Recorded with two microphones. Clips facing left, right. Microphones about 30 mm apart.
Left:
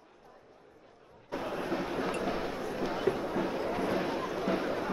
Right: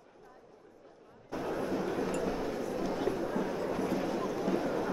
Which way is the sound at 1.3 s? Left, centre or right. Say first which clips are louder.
Even; left.